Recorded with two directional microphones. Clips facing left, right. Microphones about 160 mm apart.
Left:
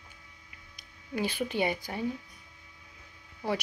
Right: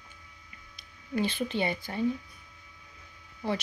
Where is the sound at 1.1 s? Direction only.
10° left (ahead or behind).